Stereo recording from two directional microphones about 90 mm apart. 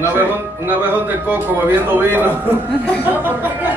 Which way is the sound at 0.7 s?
20° right (ahead or behind).